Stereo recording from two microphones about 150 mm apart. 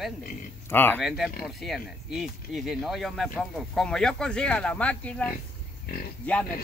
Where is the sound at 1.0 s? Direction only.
Centre (ahead or behind).